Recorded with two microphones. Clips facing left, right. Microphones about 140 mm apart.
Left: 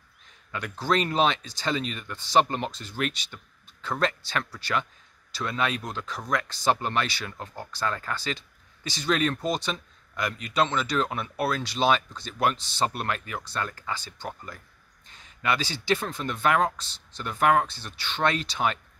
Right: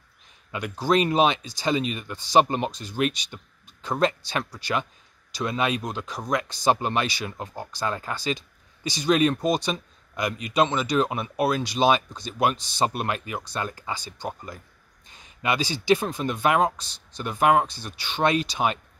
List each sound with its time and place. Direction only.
0.5 s speech: 15° right (ahead or behind)